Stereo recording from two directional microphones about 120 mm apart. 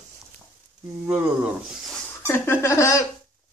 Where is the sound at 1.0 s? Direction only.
10° right (ahead or behind).